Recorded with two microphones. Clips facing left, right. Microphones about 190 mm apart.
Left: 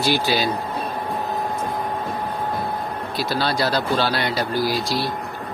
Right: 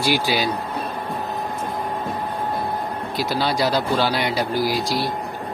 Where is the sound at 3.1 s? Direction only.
15° right (ahead or behind).